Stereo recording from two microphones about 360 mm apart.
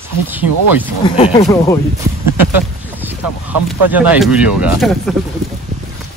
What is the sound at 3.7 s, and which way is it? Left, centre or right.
Speech, centre.